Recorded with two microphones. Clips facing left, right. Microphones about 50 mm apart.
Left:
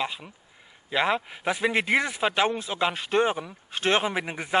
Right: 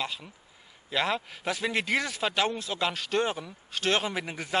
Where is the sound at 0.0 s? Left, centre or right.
Centre.